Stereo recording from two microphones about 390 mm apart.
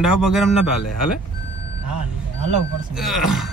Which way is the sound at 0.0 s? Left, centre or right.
Centre.